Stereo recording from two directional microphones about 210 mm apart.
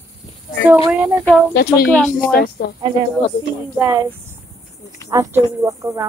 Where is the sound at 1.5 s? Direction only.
50° left (ahead or behind).